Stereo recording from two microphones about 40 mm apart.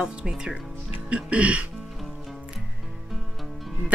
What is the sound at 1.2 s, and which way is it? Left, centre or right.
Speech, right.